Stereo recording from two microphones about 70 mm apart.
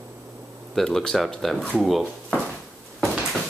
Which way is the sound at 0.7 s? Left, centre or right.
Centre.